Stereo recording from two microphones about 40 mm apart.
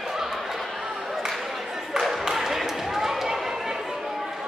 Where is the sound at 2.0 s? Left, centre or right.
Centre.